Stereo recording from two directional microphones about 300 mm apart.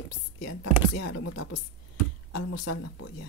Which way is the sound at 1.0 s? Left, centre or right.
Left.